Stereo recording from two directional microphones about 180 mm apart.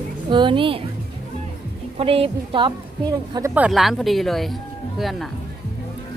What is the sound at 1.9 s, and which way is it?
Speech, 30° right (ahead or behind).